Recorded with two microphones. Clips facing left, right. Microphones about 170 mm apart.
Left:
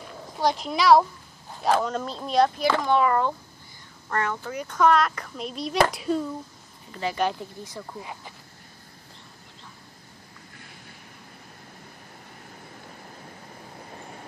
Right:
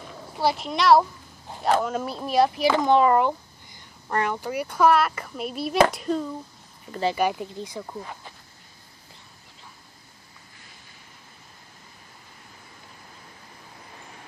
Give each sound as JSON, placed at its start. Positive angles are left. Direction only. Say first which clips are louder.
{"t": 0.4, "sound": "a woman's voice", "louder": "even", "side_deg": -5}
{"t": 2.9, "sound": "a child's voice", "louder": "right 4 dB", "side_deg": -25}
{"t": 6.9, "sound": "speech", "louder": "right 5 dB", "side_deg": -35}
{"t": 7.2, "sound": "a child's voice", "louder": "right 2 dB", "side_deg": -15}